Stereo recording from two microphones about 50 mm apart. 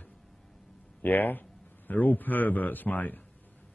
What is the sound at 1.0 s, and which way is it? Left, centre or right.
Speech, left.